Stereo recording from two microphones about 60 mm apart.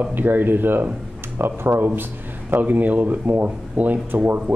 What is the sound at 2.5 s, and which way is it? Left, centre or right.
Speech, right.